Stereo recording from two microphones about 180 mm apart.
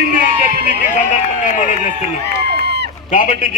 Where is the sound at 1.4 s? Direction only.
45° left (ahead or behind).